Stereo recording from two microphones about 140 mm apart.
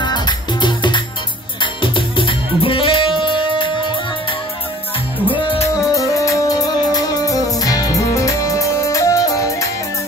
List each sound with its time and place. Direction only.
0.0 s music: 30° left (ahead or behind)
5.2 s music: 40° left (ahead or behind)
5.9 s music: 25° left (ahead or behind)